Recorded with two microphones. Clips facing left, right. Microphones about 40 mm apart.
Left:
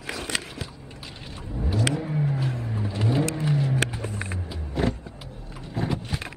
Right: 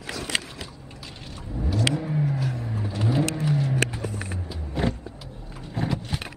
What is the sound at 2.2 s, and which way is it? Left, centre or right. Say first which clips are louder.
Vehicle: even; left.